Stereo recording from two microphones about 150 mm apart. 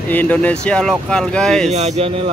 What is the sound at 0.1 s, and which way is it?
Speech, 10° left (ahead or behind).